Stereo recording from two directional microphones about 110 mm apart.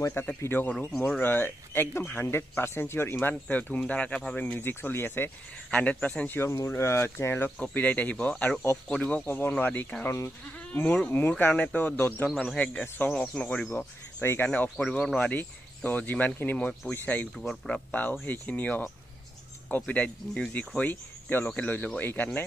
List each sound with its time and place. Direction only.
0.0 s speech: 20° left (ahead or behind)
0.7 s speech: 5° left (ahead or behind)
1.2 s speech: 20° left (ahead or behind)
17.4 s speech: 5° left (ahead or behind)
18.2 s speech: 15° left (ahead or behind)